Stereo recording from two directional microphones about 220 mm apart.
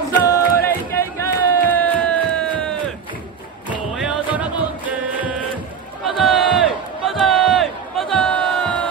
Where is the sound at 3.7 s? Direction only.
5° right (ahead or behind).